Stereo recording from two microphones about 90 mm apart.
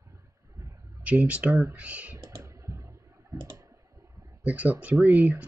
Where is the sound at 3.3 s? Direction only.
45° right (ahead or behind).